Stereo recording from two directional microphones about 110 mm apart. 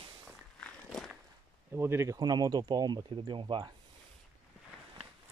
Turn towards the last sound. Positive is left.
turn(degrees=-45)  # may be behind; listen again after turning